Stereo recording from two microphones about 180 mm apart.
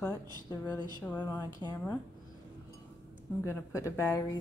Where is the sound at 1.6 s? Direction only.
25° left (ahead or behind).